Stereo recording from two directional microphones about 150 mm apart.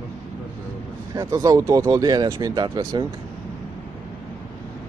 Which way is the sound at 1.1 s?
20° right (ahead or behind).